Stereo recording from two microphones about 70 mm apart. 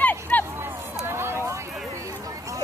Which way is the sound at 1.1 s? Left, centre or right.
Right.